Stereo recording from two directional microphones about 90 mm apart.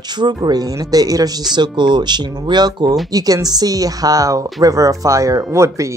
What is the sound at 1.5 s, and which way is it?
Speech, 55° right (ahead or behind).